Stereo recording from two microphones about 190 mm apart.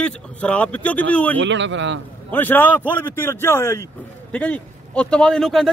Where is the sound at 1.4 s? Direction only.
70° right (ahead or behind).